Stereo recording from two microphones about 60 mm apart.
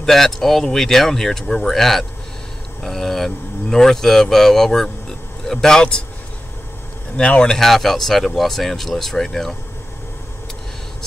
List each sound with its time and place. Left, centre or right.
0.0 s a man's voice: centre
7.2 s a man's voice: centre
7.5 s speech: centre